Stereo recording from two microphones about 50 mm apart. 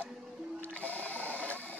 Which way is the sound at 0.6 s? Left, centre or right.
Left.